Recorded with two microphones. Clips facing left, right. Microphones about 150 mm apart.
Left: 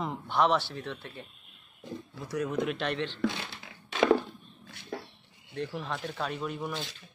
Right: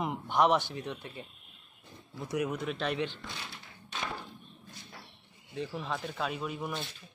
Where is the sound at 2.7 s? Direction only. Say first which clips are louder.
Left 1 dB; centre (ahead or behind).